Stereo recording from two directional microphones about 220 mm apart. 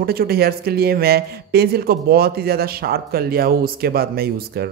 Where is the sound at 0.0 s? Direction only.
45° right (ahead or behind).